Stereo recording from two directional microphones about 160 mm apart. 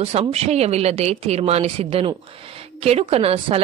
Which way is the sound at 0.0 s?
40° right (ahead or behind).